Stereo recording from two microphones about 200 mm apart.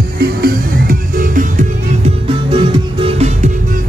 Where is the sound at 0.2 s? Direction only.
50° right (ahead or behind); by 3.5 s 30° right (ahead or behind).